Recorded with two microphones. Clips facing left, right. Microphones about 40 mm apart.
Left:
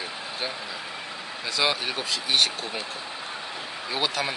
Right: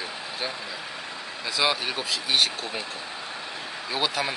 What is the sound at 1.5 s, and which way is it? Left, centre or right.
Speech, centre.